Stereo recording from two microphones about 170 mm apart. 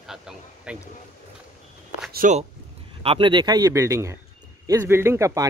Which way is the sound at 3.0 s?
30° right (ahead or behind).